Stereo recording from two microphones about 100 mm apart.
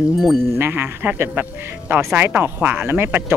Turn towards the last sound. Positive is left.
turn(degrees=-20)  # may be behind; listen again after turning